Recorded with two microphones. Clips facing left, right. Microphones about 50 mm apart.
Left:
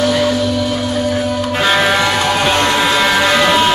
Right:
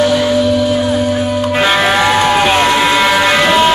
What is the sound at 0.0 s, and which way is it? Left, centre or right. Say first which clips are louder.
Music: right 3 dB; centre.